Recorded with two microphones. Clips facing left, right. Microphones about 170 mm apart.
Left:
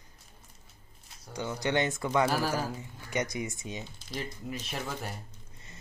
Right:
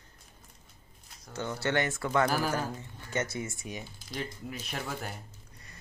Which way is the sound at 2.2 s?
5° left (ahead or behind).